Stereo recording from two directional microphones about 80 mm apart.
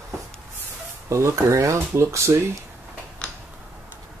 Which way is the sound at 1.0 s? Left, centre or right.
Right.